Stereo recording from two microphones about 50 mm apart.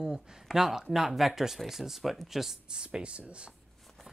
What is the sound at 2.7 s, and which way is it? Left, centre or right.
Speech, centre.